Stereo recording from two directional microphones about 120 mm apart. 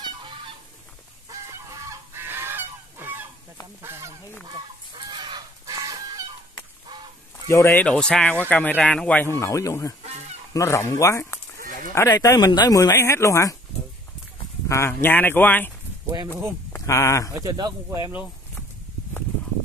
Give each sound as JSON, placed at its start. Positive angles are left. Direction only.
{"t": 1.3, "sound": "goose", "side_deg": -25}
{"t": 4.5, "sound": "fowl", "side_deg": -40}
{"t": 7.4, "sound": "speech", "side_deg": 20}
{"t": 7.8, "sound": "speech", "side_deg": 10}
{"t": 10.0, "sound": "goose", "side_deg": -65}
{"t": 10.5, "sound": "speech", "side_deg": 25}
{"t": 14.7, "sound": "speech", "side_deg": 20}
{"t": 16.7, "sound": "speech", "side_deg": 25}
{"t": 17.5, "sound": "speech", "side_deg": -35}